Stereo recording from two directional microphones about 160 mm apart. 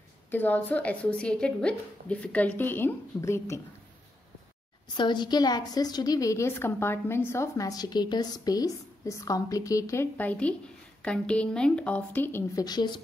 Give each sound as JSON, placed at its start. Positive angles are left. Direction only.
{"t": 0.3, "sound": "a woman's voice", "side_deg": 10}
{"t": 4.9, "sound": "a woman's voice", "side_deg": 30}